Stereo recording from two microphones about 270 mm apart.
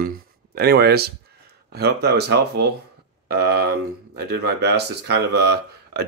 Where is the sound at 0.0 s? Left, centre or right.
Right.